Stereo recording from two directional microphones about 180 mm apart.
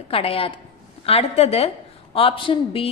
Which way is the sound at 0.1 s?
30° left (ahead or behind).